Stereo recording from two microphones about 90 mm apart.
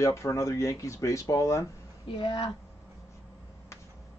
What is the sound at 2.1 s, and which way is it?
Speech, 65° left (ahead or behind).